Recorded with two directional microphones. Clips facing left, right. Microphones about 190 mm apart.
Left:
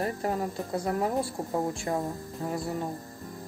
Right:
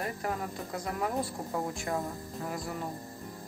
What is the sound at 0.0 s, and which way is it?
Speech, 30° left (ahead or behind).